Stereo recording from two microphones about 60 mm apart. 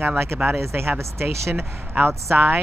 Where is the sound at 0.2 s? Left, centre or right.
Right.